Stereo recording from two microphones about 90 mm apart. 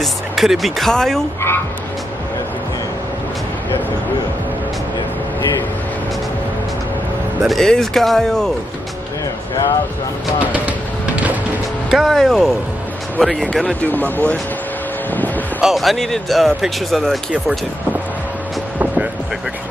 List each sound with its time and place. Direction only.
0.0 s speech: centre (ahead or behind)
7.4 s speech: 5° left (ahead or behind)
11.9 s speech: 5° right (ahead or behind)
13.8 s speech: 20° left (ahead or behind)
15.6 s speech: centre (ahead or behind)